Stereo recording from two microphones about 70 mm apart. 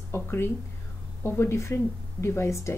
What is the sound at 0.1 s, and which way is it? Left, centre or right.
Speech, left.